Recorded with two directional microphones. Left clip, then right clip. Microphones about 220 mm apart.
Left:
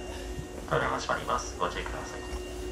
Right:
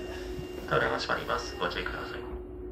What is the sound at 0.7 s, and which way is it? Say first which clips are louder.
Speech: right 1 dB; 30° left (ahead or behind).